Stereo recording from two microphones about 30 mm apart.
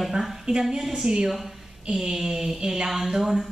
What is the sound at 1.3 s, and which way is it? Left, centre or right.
Speech, centre.